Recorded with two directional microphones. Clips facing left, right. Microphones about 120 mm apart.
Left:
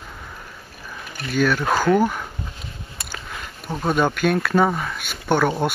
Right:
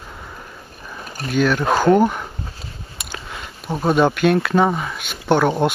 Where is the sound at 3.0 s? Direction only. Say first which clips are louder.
Right 2 dB; 15° right (ahead or behind).